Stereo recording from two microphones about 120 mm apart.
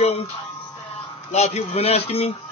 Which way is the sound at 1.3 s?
65° left (ahead or behind).